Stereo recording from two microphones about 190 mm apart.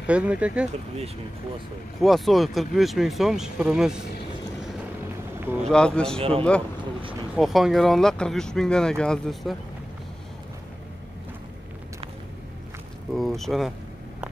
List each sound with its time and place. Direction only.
0.0 s speech: 5° right (ahead or behind)
2.0 s speech: centre (ahead or behind)
5.7 s speech: 5° left (ahead or behind)
6.1 s speech: 30° right (ahead or behind)
7.3 s speech: centre (ahead or behind)
13.1 s speech: centre (ahead or behind)